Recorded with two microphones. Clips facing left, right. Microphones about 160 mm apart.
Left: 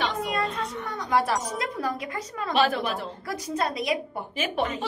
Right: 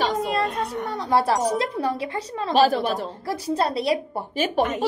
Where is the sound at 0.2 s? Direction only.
30° right (ahead or behind).